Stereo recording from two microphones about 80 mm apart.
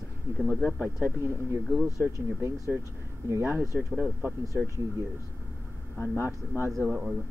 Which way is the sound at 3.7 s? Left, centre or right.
Centre.